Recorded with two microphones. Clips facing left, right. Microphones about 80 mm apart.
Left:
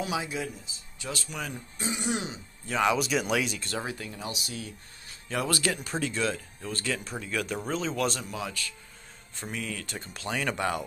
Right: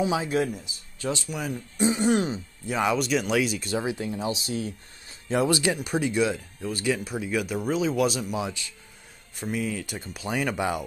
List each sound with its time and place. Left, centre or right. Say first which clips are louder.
0.0 s speech: right 6 dB; right
1.3 s speech: right 4 dB; centre
1.8 s speech: right 11 dB; right
2.0 s speech: right 9 dB; right
2.6 s speech: right 1 dB; centre
4.0 s speech: right 8 dB; right
5.3 s speech: right 6 dB; centre
8.4 s speech: right 4 dB; centre
9.3 s speech: right 7 dB; centre